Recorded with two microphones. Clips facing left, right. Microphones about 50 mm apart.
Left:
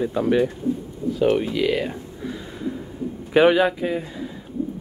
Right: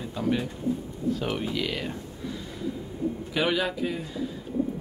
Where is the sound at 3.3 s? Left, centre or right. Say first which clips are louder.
Left 12 dB; left.